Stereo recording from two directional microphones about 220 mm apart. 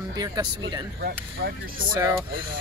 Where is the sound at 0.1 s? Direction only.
20° right (ahead or behind).